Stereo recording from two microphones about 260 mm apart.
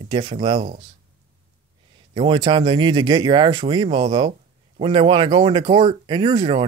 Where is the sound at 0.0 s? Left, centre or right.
Centre.